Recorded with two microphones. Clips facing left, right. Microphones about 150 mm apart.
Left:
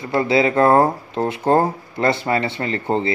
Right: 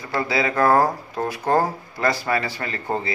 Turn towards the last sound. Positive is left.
turn(degrees=25)  # may be behind; listen again after turning